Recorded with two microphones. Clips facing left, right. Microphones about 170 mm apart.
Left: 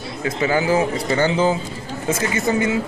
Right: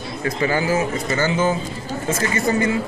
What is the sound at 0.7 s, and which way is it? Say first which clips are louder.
Speech: left 2 dB; 30° left (ahead or behind).